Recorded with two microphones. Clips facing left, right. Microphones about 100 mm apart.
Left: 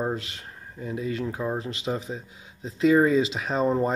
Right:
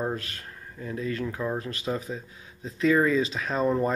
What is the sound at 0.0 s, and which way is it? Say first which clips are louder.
Speech: left 2 dB; 20° left (ahead or behind).